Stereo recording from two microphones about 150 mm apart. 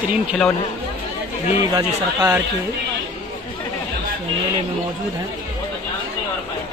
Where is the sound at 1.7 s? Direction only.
25° right (ahead or behind).